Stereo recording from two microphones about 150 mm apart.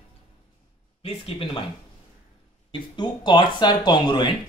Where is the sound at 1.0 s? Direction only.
40° left (ahead or behind).